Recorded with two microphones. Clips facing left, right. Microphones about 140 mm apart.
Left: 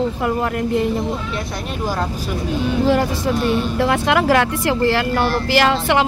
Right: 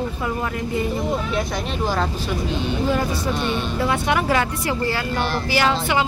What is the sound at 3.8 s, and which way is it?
Speech, 90° left.